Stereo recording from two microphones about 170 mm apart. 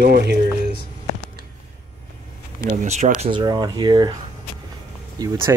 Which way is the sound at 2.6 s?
45° right (ahead or behind).